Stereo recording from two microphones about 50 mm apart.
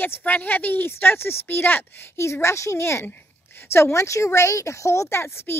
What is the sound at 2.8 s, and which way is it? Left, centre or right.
A woman's voice, left.